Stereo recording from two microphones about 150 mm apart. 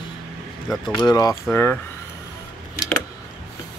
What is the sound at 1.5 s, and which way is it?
Speech, 15° left (ahead or behind).